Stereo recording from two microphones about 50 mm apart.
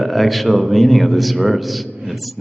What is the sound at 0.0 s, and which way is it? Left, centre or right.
Speech, centre.